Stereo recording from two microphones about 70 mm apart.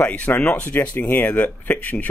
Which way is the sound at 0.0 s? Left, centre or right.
Centre.